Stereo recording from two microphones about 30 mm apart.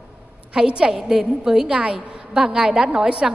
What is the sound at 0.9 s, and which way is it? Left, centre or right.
A woman's voice, centre.